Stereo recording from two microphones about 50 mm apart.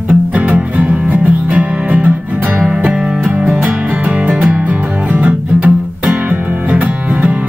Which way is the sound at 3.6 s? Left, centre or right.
Right.